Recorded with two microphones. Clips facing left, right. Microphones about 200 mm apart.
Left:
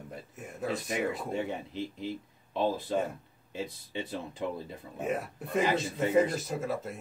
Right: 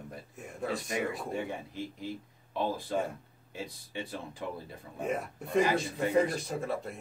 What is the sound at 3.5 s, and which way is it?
Speech, 20° left (ahead or behind).